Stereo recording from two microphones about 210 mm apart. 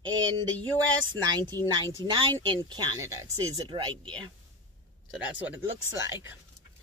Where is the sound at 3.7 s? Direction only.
25° right (ahead or behind).